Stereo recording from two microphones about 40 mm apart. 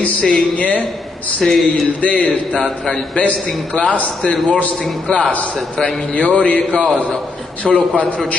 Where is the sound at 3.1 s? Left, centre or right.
Left.